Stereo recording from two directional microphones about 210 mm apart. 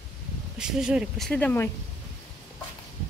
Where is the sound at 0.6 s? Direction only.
5° right (ahead or behind).